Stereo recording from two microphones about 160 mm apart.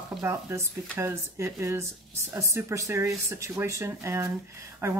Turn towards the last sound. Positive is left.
turn(degrees=-15)  # may be behind; listen again after turning